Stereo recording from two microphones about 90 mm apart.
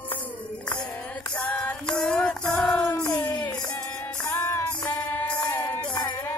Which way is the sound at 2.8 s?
40° left (ahead or behind).